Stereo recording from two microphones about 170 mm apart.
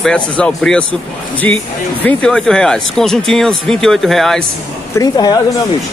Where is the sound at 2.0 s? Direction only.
5° left (ahead or behind).